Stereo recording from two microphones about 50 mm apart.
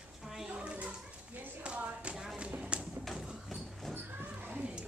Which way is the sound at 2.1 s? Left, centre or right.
Centre.